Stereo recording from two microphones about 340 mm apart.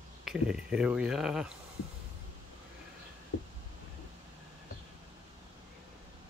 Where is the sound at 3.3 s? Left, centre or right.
Left.